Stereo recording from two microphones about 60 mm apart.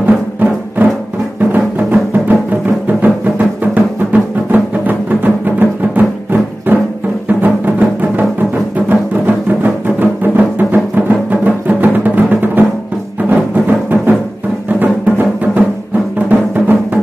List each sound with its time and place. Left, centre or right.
0.0 s music: right